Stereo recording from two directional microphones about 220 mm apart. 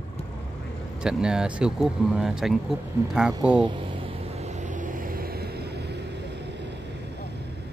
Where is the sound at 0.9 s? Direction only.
5° right (ahead or behind).